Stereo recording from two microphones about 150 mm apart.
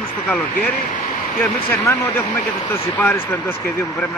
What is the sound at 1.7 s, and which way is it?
Speech, 15° left (ahead or behind).